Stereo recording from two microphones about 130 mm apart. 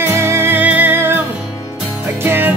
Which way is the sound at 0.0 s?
20° right (ahead or behind).